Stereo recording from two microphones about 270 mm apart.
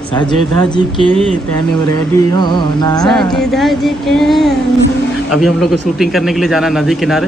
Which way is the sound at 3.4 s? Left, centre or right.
Centre.